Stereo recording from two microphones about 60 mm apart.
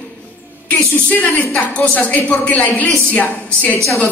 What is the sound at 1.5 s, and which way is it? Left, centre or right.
A woman's voice, left.